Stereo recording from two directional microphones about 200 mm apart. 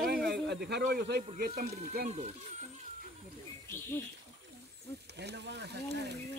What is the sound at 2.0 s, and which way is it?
Speech, 35° right (ahead or behind).